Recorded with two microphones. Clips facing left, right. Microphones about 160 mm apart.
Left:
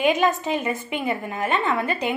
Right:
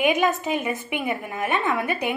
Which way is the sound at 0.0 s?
15° right (ahead or behind).